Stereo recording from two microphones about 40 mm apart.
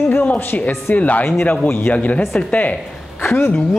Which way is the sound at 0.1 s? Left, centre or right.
Left.